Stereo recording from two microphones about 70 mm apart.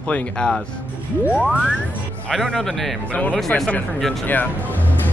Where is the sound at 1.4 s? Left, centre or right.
Centre.